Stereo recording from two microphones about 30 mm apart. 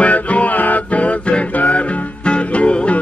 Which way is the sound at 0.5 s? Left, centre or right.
Left.